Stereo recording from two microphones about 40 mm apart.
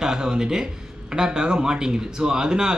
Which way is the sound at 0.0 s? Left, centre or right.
Centre.